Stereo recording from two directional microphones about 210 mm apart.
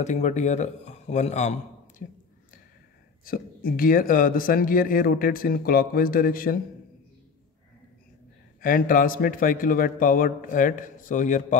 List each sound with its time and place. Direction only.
0.0 s a man's voice: 35° left (ahead or behind)
3.3 s speech: 45° left (ahead or behind)
8.5 s a man's voice: 40° left (ahead or behind)